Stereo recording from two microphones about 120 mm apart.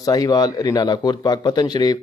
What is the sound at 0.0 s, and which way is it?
A man's voice, 30° left (ahead or behind).